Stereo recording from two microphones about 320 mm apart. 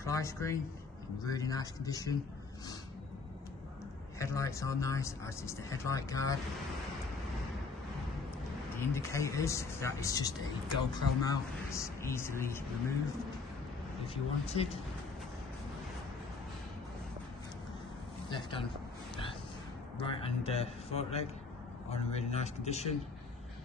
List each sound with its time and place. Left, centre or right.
0.0 s speech: centre
4.2 s speech: centre
8.9 s speech: centre
14.0 s speech: centre
18.3 s speech: centre
20.0 s speech: centre